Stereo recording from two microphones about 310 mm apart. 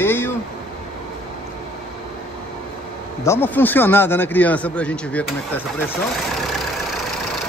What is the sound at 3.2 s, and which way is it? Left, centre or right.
Speech, centre.